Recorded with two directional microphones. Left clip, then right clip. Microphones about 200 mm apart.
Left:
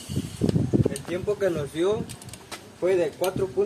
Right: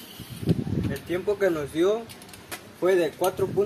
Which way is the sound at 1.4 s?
20° right (ahead or behind).